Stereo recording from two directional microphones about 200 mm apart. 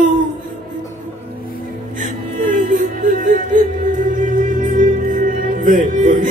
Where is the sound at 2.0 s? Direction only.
40° right (ahead or behind).